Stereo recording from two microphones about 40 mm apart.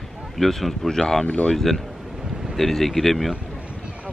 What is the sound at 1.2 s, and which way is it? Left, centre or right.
Speech, left.